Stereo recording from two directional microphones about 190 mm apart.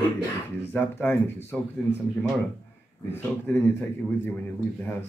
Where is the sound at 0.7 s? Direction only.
10° left (ahead or behind).